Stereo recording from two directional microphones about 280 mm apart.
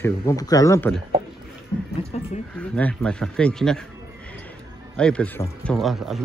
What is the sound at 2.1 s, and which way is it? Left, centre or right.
Speech, left.